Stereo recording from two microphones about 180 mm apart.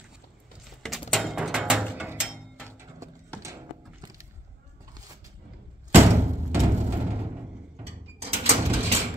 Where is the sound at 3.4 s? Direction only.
20° right (ahead or behind).